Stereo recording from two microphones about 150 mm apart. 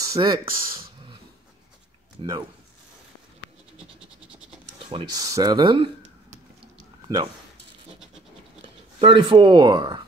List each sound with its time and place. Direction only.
0.0 s a sound: 25° right (ahead or behind)
2.1 s speech: 25° right (ahead or behind)
4.7 s speech: 35° right (ahead or behind)
9.0 s speech: 35° right (ahead or behind)